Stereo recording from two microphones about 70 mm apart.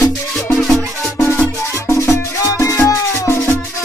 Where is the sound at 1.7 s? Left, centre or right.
Left.